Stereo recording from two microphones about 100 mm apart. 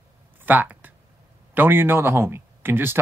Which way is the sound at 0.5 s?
15° right (ahead or behind).